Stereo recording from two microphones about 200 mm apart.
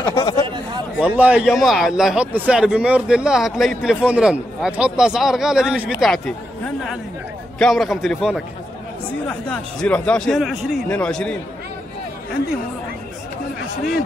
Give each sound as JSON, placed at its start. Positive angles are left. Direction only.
{"t": 0.0, "sound": "speech", "side_deg": 20}
{"t": 0.9, "sound": "a man's voice", "side_deg": -5}
{"t": 7.5, "sound": "a man's voice", "side_deg": 0}